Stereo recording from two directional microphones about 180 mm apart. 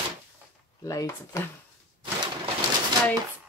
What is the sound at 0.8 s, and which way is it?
Speech, 15° left (ahead or behind).